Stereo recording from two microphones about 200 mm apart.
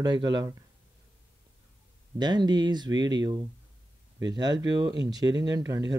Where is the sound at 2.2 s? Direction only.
20° right (ahead or behind).